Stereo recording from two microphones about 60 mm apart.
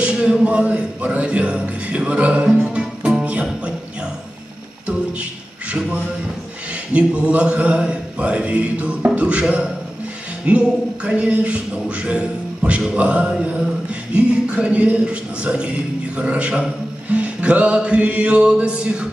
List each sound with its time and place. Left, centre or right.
0.0 s music: centre
3.0 s music: centre
6.9 s music: centre
13.2 s mantra: centre
14.1 s music: centre